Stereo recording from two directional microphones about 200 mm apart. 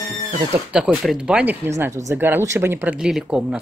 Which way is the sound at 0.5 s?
5° right (ahead or behind).